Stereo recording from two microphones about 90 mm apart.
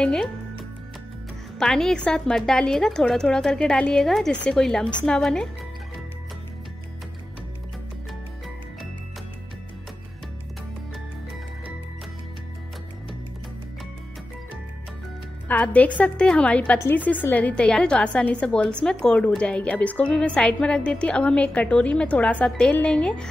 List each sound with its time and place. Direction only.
0.0 s a woman's voice: 10° left (ahead or behind)
1.6 s a woman's voice: 5° left (ahead or behind)
15.4 s a woman's voice: 15° left (ahead or behind)